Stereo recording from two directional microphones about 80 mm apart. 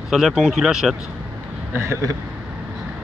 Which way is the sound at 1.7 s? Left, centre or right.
Right.